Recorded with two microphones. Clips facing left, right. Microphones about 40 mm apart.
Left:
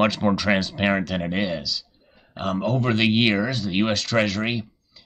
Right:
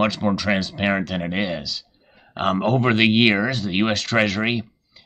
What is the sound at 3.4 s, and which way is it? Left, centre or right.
Speech, centre.